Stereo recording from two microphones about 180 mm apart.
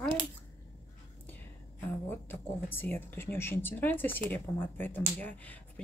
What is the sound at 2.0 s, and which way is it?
Speech, 10° left (ahead or behind).